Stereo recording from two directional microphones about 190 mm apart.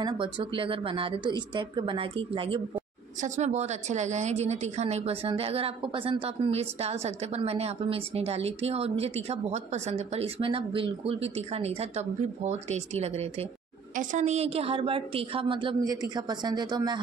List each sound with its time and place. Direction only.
0.0 s a woman's voice: 25° right (ahead or behind)